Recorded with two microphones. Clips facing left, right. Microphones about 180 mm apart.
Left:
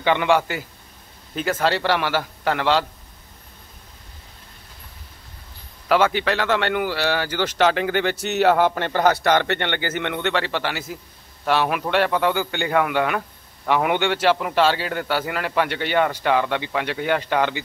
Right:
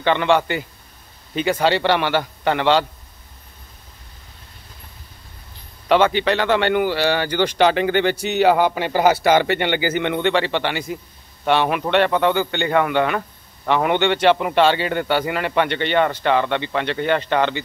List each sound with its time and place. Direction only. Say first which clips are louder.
0.0 s a man's voice: right 1 dB; 10° left (ahead or behind)
5.9 s speech: right 3 dB; 5° left (ahead or behind)